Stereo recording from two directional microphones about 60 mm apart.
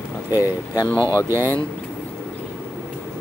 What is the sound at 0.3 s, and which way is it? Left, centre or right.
Speech, left.